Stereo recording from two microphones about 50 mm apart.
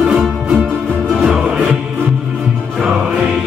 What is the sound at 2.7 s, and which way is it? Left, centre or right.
Music, centre.